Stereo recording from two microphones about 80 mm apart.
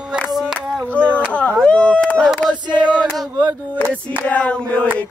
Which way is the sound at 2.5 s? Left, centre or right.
Right.